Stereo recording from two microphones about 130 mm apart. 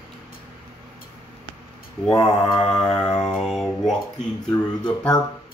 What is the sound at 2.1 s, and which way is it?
Mantra, 30° left (ahead or behind).